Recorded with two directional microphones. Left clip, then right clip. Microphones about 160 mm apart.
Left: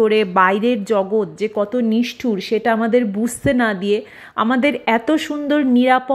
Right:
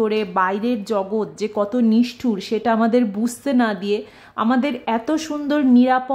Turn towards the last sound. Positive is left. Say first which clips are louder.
# left 2 dB
turn(degrees=15)  # may be behind; listen again after turning